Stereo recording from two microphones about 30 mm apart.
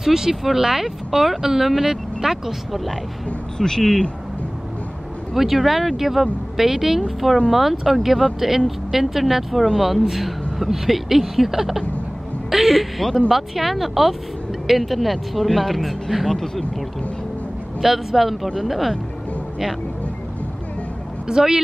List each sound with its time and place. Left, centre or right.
0.0 s speech: centre
3.5 s a man's voice: left
5.3 s speech: centre
7.3 s speech: centre
7.6 s a woman's voice: centre
17.8 s speech: centre
21.3 s speech: right